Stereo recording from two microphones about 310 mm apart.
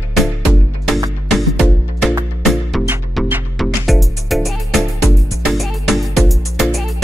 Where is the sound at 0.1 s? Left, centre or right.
Centre.